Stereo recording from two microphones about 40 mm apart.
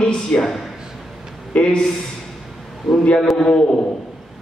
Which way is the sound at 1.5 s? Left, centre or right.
Left.